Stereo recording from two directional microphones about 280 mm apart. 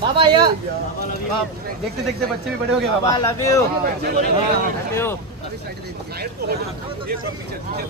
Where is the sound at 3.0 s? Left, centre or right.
Centre.